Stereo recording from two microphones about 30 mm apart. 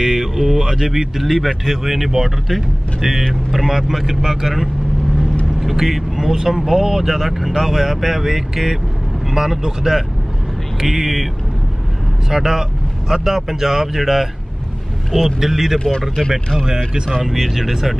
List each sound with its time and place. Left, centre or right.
0.0 s mantra: centre
0.4 s speech: centre
0.7 s speech: centre
10.8 s speech: centre
12.3 s speech: centre
16.5 s speech: right
17.2 s speech: centre